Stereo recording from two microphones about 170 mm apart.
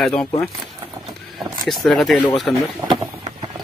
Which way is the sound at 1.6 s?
Centre (ahead or behind).